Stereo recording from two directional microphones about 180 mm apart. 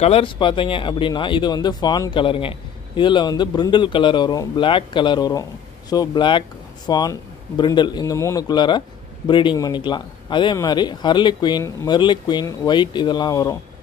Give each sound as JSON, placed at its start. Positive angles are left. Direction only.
{"t": 0.0, "sound": "speech", "side_deg": 30}